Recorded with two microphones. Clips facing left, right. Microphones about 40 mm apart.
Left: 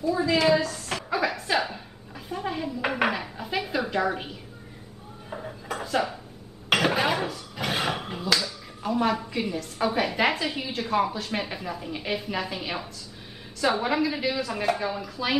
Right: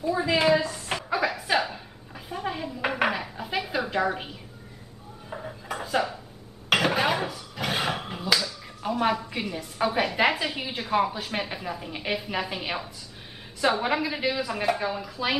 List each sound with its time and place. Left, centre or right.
0.0 s a woman's voice: right
0.9 s a sound: centre
9.4 s a woman's voice: centre
13.7 s a woman's voice: centre